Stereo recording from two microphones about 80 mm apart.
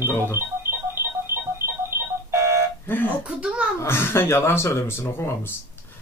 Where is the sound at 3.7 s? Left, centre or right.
Left.